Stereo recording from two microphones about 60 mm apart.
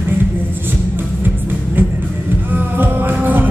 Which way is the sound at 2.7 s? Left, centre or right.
Right.